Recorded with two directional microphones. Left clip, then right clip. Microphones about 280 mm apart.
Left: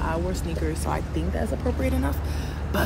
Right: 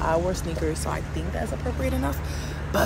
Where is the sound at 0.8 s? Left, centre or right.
Centre.